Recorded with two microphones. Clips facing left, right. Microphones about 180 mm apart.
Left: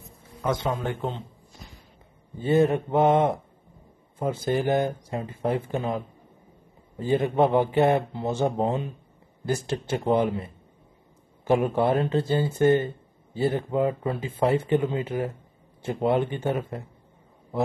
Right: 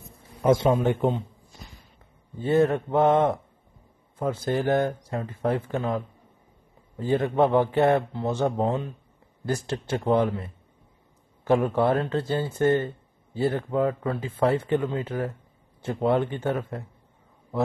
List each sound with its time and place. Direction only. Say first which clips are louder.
0.4 s a man's voice: right 6 dB; 25° right (ahead or behind)
2.4 s speech: even; 15° left (ahead or behind)
11.4 s speech: even; 15° left (ahead or behind)